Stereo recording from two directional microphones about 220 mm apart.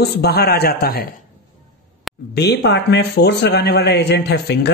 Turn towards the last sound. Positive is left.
turn(degrees=50)  # may be behind; listen again after turning